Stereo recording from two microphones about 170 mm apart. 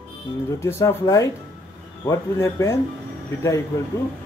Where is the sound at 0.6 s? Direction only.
15° left (ahead or behind).